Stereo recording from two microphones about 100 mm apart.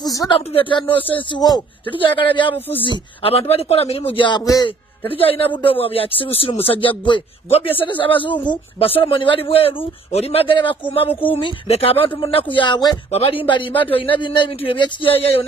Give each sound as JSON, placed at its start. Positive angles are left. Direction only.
{"t": 0.0, "sound": "speech", "side_deg": 35}
{"t": 0.3, "sound": "speech", "side_deg": 60}
{"t": 3.2, "sound": "a man's voice", "side_deg": 70}
{"t": 7.8, "sound": "a man's voice", "side_deg": 60}
{"t": 13.1, "sound": "speech", "side_deg": 70}